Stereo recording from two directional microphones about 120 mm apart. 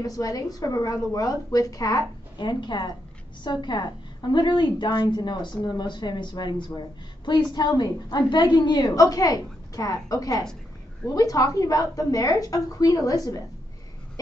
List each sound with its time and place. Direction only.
0.0 s a woman's voice: 30° left (ahead or behind)